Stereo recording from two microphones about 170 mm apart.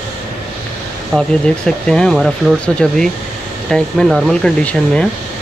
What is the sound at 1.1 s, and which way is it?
Speech, 5° left (ahead or behind).